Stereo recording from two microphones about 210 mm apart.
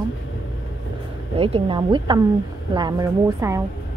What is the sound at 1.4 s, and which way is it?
A woman's voice, 25° right (ahead or behind).